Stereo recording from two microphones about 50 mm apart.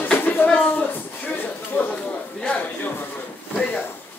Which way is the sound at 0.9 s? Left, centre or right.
Left.